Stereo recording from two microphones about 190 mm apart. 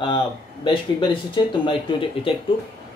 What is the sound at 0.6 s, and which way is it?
Speech, 25° left (ahead or behind).